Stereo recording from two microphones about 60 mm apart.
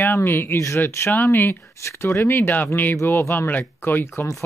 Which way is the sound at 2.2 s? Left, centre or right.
Left.